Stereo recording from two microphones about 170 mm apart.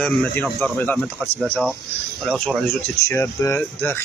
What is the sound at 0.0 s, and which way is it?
Speech, 10° left (ahead or behind).